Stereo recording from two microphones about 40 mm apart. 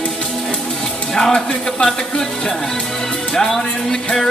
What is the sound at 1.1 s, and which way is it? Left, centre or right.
Speech, left.